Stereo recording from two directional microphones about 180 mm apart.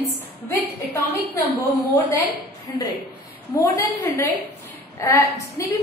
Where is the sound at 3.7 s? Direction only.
20° left (ahead or behind).